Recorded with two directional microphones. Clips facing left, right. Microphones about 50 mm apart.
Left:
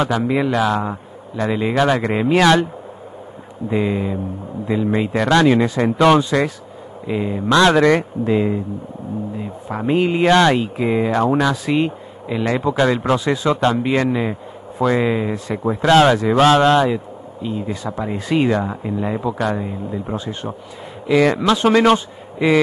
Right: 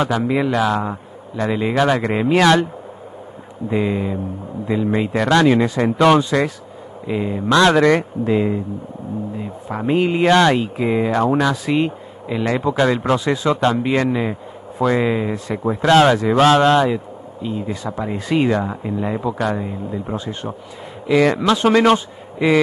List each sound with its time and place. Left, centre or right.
0.0 s speech: centre
3.7 s speech: centre
7.7 s speech: centre
9.7 s speech: centre